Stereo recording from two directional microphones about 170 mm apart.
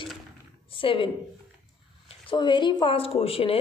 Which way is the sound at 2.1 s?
30° left (ahead or behind).